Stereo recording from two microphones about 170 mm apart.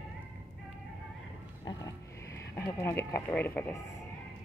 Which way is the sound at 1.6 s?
25° left (ahead or behind).